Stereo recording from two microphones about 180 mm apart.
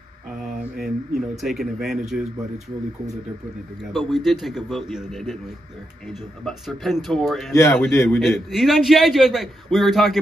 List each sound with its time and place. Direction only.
1.4 s a man's voice: centre (ahead or behind)
3.9 s a man's voice: centre (ahead or behind)
7.5 s a man's voice: 15° left (ahead or behind)
8.2 s a man's voice: centre (ahead or behind)